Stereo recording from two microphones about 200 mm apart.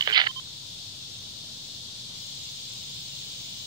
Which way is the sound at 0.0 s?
20° right (ahead or behind).